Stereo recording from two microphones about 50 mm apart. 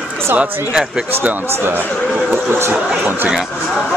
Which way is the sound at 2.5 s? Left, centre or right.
Right.